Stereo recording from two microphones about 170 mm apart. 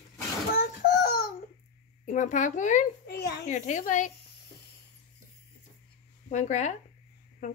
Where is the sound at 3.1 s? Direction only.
70° left (ahead or behind).